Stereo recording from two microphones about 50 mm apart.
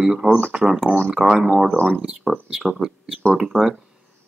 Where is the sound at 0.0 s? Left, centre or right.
Centre.